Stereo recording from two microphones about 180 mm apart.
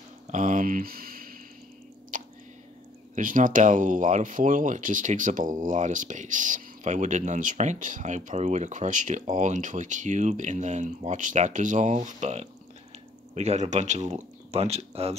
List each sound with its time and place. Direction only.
0.3 s speech: 45° right (ahead or behind)
2.1 s a sound: 50° right (ahead or behind)
3.2 s speech: 50° right (ahead or behind)